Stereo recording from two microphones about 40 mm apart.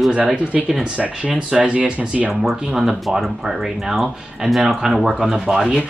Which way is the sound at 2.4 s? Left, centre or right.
Centre.